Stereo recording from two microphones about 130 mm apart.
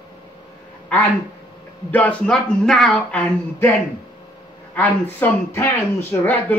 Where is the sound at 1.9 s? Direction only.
10° left (ahead or behind).